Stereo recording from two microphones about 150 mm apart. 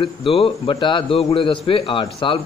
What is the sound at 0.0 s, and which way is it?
A man's voice, 35° left (ahead or behind).